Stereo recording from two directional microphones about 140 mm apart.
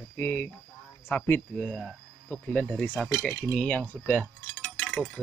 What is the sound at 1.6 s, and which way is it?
Speech, centre (ahead or behind).